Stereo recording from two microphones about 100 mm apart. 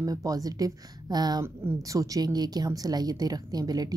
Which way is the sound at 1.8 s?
35° right (ahead or behind).